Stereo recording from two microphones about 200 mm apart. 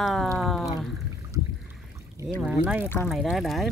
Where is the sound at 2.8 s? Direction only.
10° left (ahead or behind).